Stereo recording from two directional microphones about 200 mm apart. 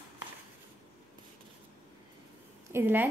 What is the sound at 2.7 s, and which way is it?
Speech, 10° right (ahead or behind).